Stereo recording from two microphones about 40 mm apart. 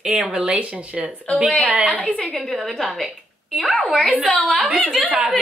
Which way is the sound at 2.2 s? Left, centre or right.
Centre.